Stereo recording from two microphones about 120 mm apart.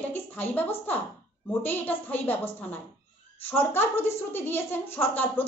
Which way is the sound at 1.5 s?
15° left (ahead or behind).